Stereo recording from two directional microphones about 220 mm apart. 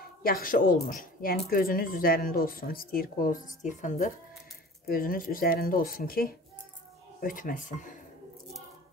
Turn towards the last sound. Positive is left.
turn(degrees=35)  # may be behind; listen again after turning